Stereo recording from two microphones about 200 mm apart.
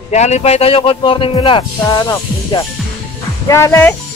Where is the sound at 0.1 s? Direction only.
35° left (ahead or behind); by 3.9 s 15° left (ahead or behind).